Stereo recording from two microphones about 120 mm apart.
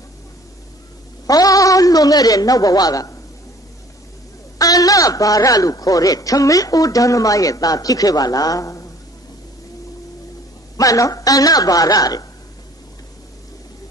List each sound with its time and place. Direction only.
1.2 s speech: 30° left (ahead or behind)
4.6 s a man's voice: 30° left (ahead or behind)
10.8 s a woman's voice: 30° left (ahead or behind)